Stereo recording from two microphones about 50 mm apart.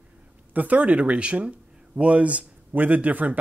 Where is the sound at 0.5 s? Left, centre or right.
Right.